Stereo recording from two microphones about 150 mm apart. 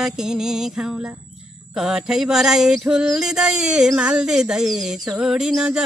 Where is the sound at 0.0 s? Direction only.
5° right (ahead or behind).